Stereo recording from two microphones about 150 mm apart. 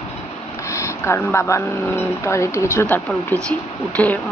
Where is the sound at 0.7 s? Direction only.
20° left (ahead or behind).